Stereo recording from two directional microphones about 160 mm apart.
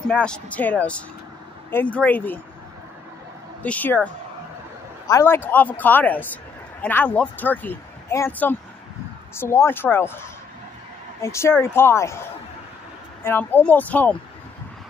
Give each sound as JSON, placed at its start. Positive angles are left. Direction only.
{"t": 0.1, "sound": "speech", "side_deg": 5}
{"t": 3.6, "sound": "a man's voice", "side_deg": 10}
{"t": 13.2, "sound": "speech", "side_deg": 10}